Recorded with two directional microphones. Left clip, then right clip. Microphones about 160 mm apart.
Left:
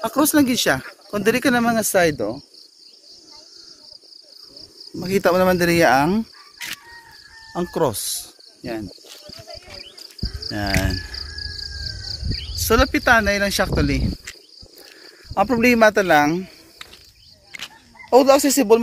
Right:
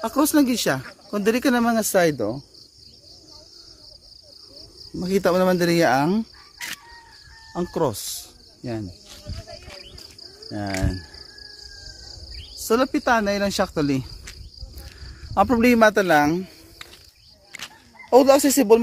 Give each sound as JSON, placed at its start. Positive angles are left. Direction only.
{"t": 0.0, "sound": "speech", "side_deg": 5}
{"t": 1.5, "sound": "speech", "side_deg": -10}
{"t": 4.9, "sound": "speech", "side_deg": 0}
{"t": 9.7, "sound": "cricket", "side_deg": 5}
{"t": 12.6, "sound": "speech", "side_deg": -10}
{"t": 15.3, "sound": "speech", "side_deg": -35}
{"t": 15.9, "sound": "speech", "side_deg": -20}
{"t": 18.1, "sound": "speech", "side_deg": -20}